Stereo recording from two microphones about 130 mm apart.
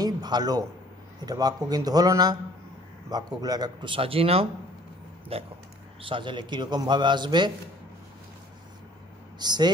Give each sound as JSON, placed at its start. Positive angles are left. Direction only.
{"t": 0.0, "sound": "a sound", "side_deg": -30}
{"t": 1.2, "sound": "a man's voice", "side_deg": -30}
{"t": 9.4, "sound": "a man's voice", "side_deg": -30}